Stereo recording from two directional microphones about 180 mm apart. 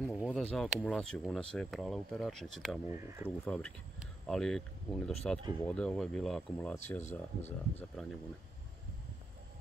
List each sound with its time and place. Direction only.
0.0 s speech: 10° left (ahead or behind)
2.9 s speech: 15° right (ahead or behind)
3.4 s speech: 5° left (ahead or behind)
7.0 s speech: 40° left (ahead or behind)